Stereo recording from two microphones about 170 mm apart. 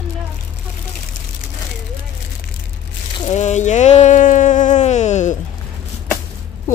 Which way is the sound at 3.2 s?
45° left (ahead or behind).